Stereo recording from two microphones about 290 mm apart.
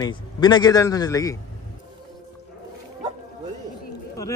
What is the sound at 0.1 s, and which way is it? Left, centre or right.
A man's voice, centre.